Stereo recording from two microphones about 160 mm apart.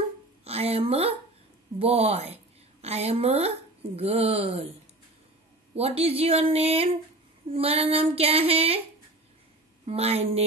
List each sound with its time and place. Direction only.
0.5 s a sound: 40° right (ahead or behind)
1.8 s a woman's voice: 40° right (ahead or behind)
5.8 s female singing: 40° right (ahead or behind)
9.8 s female singing: 40° right (ahead or behind)